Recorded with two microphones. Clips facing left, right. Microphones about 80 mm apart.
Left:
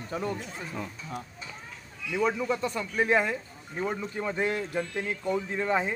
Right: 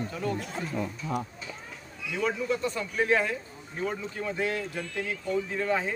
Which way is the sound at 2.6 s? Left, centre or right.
Centre.